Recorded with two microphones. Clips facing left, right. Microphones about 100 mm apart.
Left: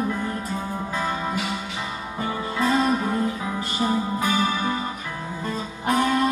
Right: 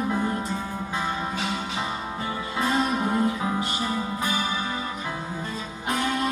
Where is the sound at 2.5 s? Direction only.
25° right (ahead or behind).